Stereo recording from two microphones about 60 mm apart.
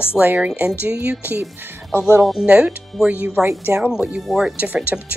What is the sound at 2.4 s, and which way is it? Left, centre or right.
A woman's voice, centre.